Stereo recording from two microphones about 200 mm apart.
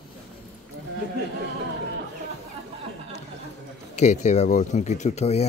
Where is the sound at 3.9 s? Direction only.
35° left (ahead or behind).